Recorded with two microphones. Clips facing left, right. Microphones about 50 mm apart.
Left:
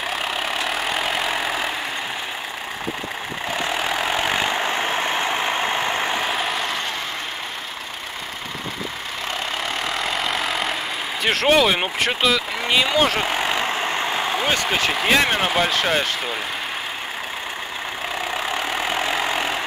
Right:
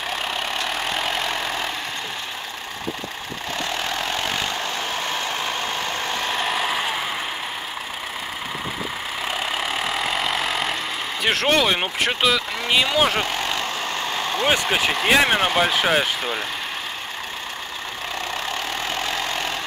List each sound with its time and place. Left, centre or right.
0.1 s vehicle: centre
3.5 s vehicle: centre
6.3 s vehicle: centre
9.6 s vehicle: centre
11.2 s speech: centre
13.2 s vehicle: centre
14.5 s speech: centre
18.3 s vehicle: centre